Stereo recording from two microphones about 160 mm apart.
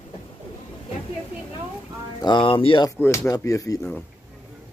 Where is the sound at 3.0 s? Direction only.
15° left (ahead or behind).